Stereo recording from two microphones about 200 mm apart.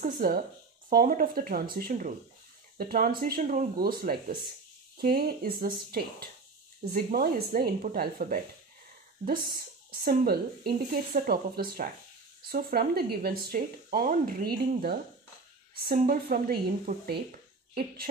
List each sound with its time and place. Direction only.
0.0 s speech: 45° right (ahead or behind)